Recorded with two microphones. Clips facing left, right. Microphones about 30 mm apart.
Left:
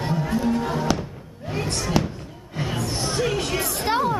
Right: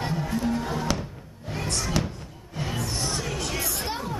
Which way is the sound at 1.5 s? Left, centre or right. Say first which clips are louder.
Left 5 dB; centre.